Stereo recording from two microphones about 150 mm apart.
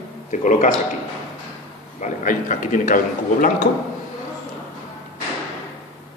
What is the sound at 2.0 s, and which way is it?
Speech, 60° left (ahead or behind).